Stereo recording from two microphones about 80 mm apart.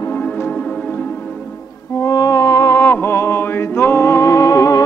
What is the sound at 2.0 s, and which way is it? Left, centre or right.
Music, left.